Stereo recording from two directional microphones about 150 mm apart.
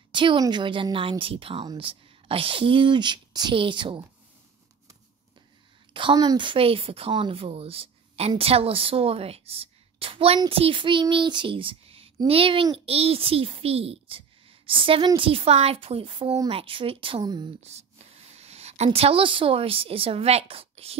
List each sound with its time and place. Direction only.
0.1 s a woman's voice: 35° right (ahead or behind)
5.9 s a woman's voice: 30° right (ahead or behind)
17.6 s speech: 45° right (ahead or behind)